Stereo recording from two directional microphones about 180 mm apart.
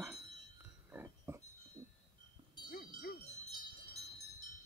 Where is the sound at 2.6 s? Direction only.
55° left (ahead or behind).